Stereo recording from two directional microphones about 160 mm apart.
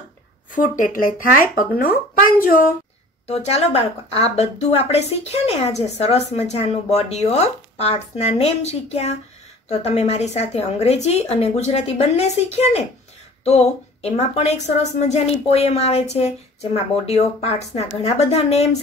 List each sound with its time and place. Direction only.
0.7 s speech: 60° left (ahead or behind)
3.3 s a woman's voice: 40° left (ahead or behind)